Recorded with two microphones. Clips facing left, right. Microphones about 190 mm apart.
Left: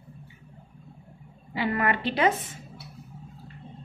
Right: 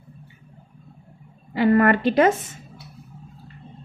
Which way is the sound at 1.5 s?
45° right (ahead or behind).